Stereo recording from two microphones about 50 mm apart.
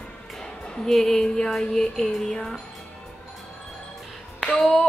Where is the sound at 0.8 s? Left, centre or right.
Centre.